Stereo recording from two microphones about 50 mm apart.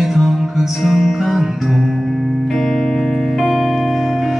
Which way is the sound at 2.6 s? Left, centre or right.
Centre.